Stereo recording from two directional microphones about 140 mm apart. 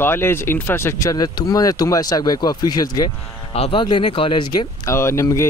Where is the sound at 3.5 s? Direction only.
45° left (ahead or behind).